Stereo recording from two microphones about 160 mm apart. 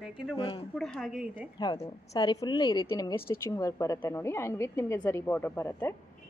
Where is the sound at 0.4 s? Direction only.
35° left (ahead or behind).